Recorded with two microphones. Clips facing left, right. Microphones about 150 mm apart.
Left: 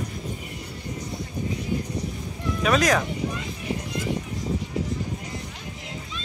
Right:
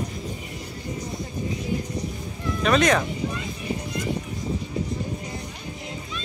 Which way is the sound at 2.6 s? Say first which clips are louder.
Right 1 dB; centre (ahead or behind).